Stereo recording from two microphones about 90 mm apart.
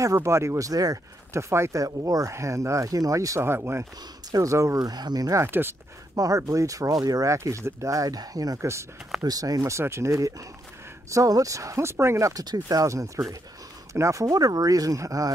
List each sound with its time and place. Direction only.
0.0 s speech: 35° right (ahead or behind)
4.3 s speech: 40° right (ahead or behind)
5.4 s speech: 25° right (ahead or behind)
6.1 s speech: 40° right (ahead or behind)
9.2 s speech: 45° right (ahead or behind)